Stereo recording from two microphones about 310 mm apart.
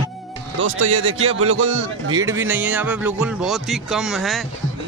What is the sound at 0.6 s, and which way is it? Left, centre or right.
A man's voice, right.